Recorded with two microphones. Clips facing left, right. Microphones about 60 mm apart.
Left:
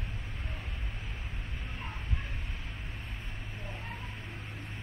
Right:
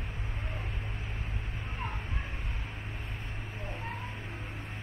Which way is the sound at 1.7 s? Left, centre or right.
Centre.